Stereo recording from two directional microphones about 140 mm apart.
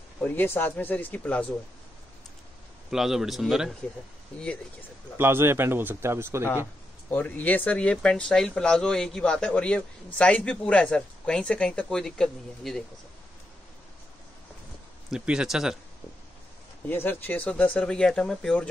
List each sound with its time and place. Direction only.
0.2 s speech: 15° left (ahead or behind)
2.9 s speech: centre (ahead or behind)
5.1 s a man's voice: 15° right (ahead or behind)
7.1 s speech: 10° left (ahead or behind)
15.0 s speech: 5° right (ahead or behind)
16.8 s speech: 15° left (ahead or behind)